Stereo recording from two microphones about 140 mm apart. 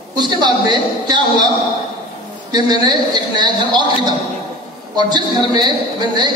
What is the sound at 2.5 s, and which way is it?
A man's voice, 30° right (ahead or behind).